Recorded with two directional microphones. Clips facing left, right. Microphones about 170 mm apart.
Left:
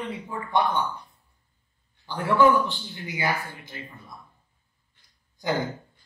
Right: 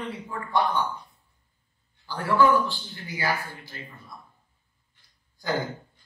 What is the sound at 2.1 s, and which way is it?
A man's voice, 20° left (ahead or behind).